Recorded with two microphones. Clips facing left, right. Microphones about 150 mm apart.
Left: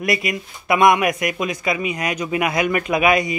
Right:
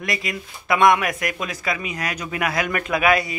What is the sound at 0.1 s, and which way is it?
A man's voice, 15° left (ahead or behind).